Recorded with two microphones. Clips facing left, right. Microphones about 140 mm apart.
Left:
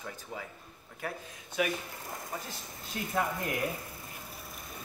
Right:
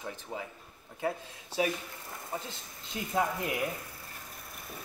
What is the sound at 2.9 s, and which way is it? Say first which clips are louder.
Speech: even; 20° right (ahead or behind).